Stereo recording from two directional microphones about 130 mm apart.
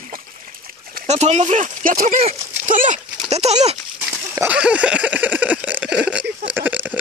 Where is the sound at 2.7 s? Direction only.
75° right (ahead or behind).